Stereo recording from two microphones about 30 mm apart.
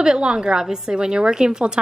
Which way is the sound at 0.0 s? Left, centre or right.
Right.